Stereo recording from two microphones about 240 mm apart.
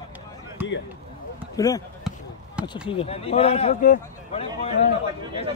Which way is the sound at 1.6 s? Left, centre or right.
Centre.